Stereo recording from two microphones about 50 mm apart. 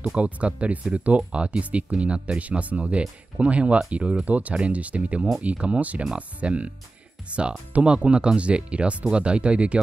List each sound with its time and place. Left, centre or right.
0.2 s speech: right